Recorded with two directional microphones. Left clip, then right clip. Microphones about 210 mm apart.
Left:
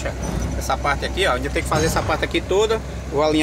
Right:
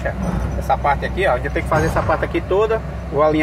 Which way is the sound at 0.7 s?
15° left (ahead or behind).